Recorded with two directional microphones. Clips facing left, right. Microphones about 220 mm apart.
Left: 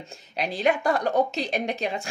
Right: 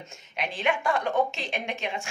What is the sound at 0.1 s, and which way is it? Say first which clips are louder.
Speech: left 5 dB; 35° left (ahead or behind).